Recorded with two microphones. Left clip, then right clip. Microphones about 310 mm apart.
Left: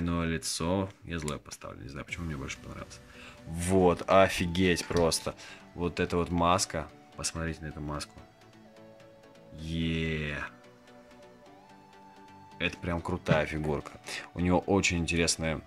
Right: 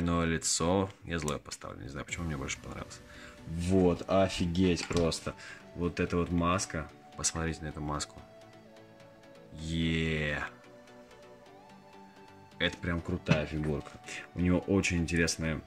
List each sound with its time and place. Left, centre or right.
0.0 s speech: centre
3.9 s speech: left
7.2 s speech: centre
9.6 s speech: centre
12.5 s speech: centre
13.2 s speech: centre